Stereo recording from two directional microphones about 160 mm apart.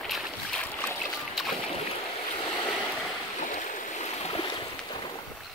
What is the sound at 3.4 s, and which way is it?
Stream, 50° left (ahead or behind).